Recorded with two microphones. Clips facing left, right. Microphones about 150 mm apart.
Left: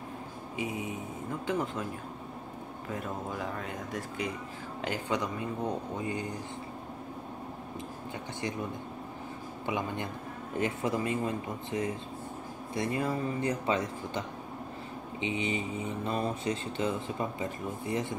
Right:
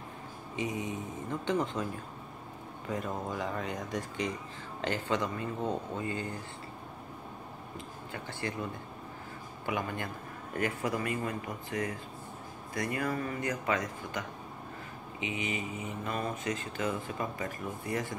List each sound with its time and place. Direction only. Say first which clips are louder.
0.6 s speech: right 1 dB; 10° left (ahead or behind)
2.9 s speech: right 2 dB; centre (ahead or behind)
8.1 s speech: left 1 dB; 15° left (ahead or behind)
9.7 s speech: left 1 dB; 20° left (ahead or behind)